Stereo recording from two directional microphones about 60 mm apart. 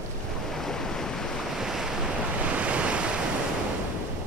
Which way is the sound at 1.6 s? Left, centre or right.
Centre.